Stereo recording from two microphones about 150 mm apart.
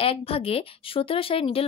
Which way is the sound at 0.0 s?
40° left (ahead or behind).